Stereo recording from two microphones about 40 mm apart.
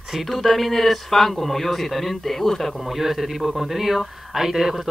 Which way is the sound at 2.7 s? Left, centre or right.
Centre.